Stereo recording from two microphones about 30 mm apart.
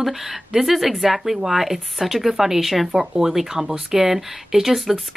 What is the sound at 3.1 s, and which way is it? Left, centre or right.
Speech, centre.